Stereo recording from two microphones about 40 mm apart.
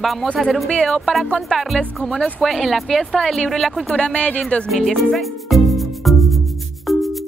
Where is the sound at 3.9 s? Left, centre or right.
Left.